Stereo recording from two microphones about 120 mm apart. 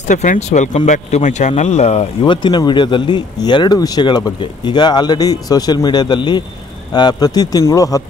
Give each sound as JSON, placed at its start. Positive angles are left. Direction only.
{"t": 0.1, "sound": "speech", "side_deg": 85}
{"t": 2.2, "sound": "speech", "side_deg": 40}